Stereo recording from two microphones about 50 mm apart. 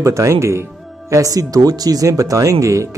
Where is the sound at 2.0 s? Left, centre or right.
Right.